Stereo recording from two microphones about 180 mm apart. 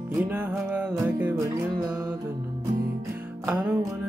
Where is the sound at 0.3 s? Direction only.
10° right (ahead or behind).